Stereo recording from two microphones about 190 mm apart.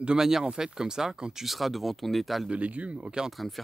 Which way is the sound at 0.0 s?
5° right (ahead or behind).